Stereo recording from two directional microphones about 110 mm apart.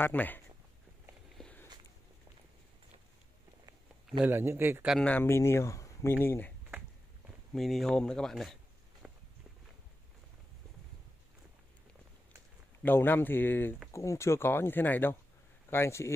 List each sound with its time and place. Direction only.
0.0 s speech: 15° left (ahead or behind)
1.4 s walk: 5° left (ahead or behind)
4.2 s speech: 20° right (ahead or behind)
5.0 s speech: 15° left (ahead or behind)
7.5 s speech: centre (ahead or behind)
9.0 s walk: centre (ahead or behind)
12.8 s speech: 20° left (ahead or behind)